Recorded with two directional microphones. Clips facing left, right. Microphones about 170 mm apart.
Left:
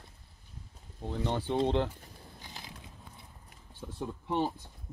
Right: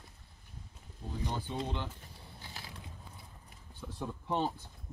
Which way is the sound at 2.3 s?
15° left (ahead or behind).